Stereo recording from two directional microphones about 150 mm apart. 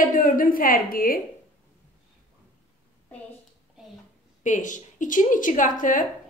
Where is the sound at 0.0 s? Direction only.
65° left (ahead or behind).